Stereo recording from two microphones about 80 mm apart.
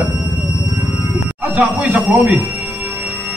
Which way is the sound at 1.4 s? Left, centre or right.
Centre.